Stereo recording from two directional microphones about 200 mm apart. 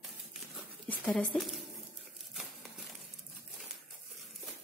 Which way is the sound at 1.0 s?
5° left (ahead or behind).